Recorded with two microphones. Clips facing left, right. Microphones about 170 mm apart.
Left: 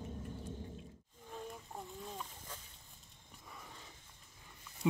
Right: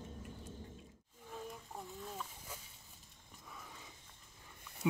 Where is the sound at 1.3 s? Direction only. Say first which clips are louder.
Left 1 dB; centre (ahead or behind).